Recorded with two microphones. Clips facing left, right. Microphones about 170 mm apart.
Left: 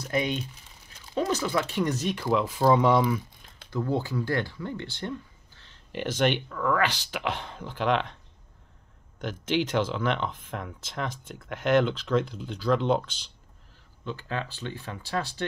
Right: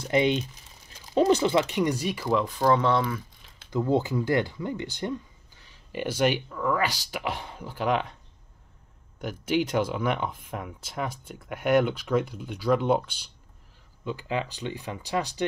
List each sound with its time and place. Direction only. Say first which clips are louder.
0.0 s speech: right 5 dB; 25° right (ahead or behind); by 3.2 s 10° left (ahead or behind)
3.7 s speech: right 4 dB; 20° right (ahead or behind)
9.2 s speech: right 1 dB; 10° right (ahead or behind)